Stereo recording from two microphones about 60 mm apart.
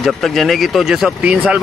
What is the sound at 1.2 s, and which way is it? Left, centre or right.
Speech, centre.